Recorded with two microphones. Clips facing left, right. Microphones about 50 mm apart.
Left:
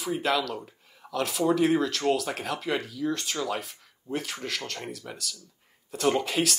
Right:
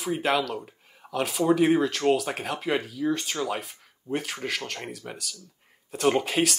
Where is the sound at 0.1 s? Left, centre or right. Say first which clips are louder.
Right 2 dB; centre.